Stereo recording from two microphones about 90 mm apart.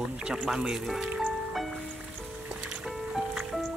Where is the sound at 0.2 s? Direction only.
10° right (ahead or behind).